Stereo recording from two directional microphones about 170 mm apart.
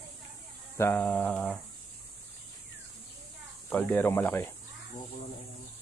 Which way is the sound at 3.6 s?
10° left (ahead or behind).